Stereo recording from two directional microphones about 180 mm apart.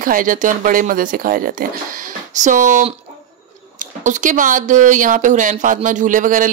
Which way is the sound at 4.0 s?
45° right (ahead or behind).